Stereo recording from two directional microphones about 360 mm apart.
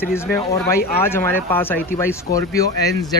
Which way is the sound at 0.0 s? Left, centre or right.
Centre.